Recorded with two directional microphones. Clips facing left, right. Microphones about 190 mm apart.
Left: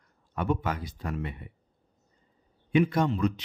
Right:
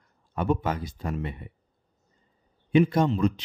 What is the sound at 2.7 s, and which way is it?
Speech, 25° right (ahead or behind).